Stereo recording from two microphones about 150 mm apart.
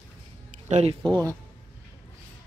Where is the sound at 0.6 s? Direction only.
45° right (ahead or behind).